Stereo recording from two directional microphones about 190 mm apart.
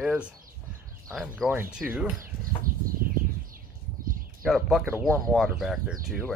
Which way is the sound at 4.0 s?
50° right (ahead or behind).